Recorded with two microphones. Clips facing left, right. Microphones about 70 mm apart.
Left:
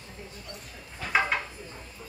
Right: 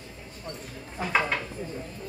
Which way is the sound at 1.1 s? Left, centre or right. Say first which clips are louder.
Even; centre.